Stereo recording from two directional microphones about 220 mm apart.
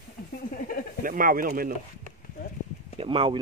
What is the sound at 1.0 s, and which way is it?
Speech, 40° right (ahead or behind).